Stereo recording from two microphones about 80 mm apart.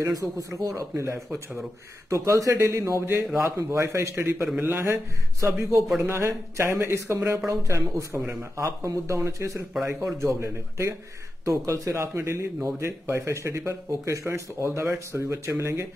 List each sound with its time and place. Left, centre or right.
0.0 s speech: right
1.3 s speech: centre
2.0 s speech: right